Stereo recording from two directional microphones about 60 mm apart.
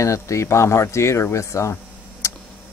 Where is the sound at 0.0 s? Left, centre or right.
Left.